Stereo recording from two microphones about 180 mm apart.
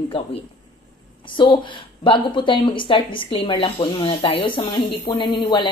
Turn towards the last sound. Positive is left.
turn(degrees=25)  # may be behind; listen again after turning